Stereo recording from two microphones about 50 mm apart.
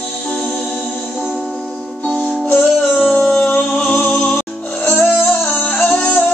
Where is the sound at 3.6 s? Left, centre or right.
Centre.